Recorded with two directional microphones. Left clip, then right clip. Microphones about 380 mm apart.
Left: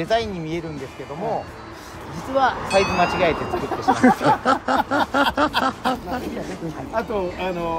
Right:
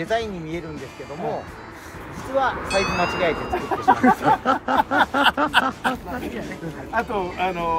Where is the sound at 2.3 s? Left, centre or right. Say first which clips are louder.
Left 3 dB; left.